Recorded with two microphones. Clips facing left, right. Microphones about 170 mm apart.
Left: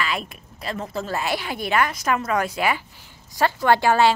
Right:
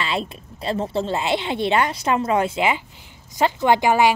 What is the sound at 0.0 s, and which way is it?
A woman's voice, 30° right (ahead or behind).